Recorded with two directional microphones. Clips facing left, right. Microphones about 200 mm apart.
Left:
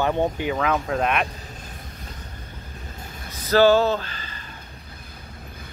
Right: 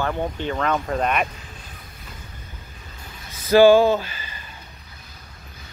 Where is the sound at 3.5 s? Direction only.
10° right (ahead or behind).